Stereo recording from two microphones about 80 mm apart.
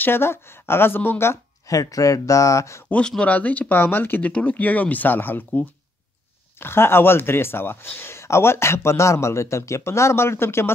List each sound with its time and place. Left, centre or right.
0.0 s speech: left
1.7 s speech: left
2.9 s speech: centre; by 10.7 s left